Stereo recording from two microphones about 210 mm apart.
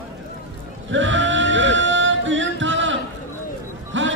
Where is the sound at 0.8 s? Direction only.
60° right (ahead or behind).